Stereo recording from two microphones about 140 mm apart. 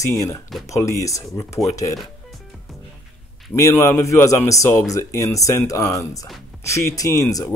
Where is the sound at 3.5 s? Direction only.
20° left (ahead or behind).